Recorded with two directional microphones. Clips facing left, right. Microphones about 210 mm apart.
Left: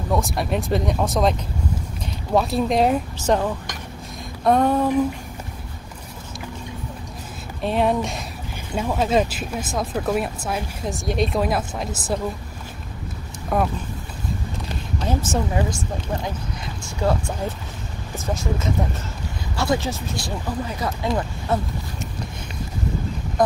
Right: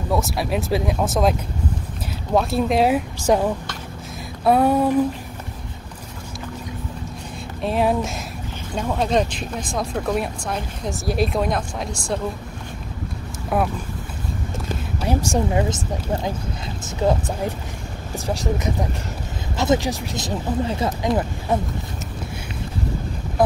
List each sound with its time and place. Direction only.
0.1 s speech: 5° right (ahead or behind)
2.3 s speech: centre (ahead or behind)
7.6 s speech: centre (ahead or behind)
13.5 s speech: 5° right (ahead or behind)
15.0 s speech: 15° right (ahead or behind)
16.8 s speech: 20° right (ahead or behind)